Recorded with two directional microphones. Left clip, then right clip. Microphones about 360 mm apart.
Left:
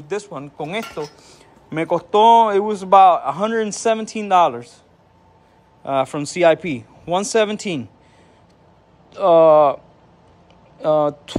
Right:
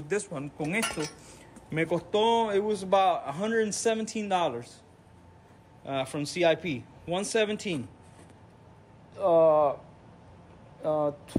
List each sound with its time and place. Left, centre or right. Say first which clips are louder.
0.1 s speech: left 5 dB; centre
5.9 s speech: left 12 dB; centre
9.1 s speech: left 10 dB; centre
10.8 s speech: left 11 dB; centre